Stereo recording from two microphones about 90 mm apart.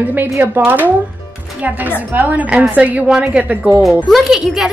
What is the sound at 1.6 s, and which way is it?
A woman's voice, 15° right (ahead or behind).